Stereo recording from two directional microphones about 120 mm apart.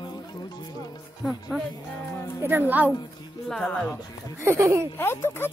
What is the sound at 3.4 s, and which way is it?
Speech, 5° left (ahead or behind).